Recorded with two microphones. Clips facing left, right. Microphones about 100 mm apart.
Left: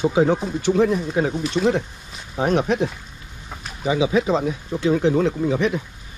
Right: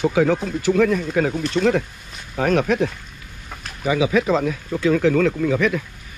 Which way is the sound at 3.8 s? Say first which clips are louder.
Right 1 dB; 25° left (ahead or behind).